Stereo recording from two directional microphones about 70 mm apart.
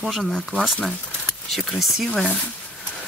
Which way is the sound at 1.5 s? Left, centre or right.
Centre.